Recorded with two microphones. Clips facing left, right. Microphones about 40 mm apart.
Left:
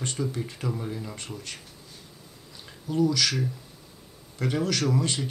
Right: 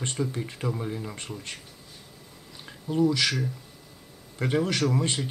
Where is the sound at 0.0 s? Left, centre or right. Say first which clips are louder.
Even; right.